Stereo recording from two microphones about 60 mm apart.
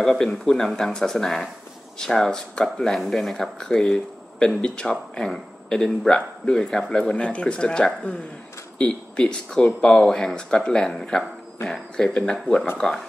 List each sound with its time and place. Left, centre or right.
0.0 s speech: centre